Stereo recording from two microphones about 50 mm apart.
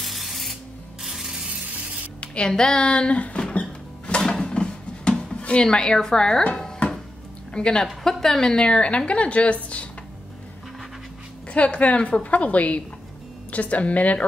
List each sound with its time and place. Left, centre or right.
0.0 s spray: centre
2.1 s speech: centre
4.2 s a sound: centre
5.3 s speech: left
7.5 s a woman's voice: centre
11.5 s a woman's voice: left